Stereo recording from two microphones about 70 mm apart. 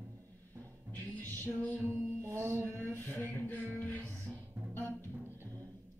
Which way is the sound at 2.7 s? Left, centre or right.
Left.